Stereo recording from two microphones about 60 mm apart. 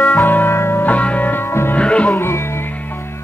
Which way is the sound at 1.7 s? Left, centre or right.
Centre.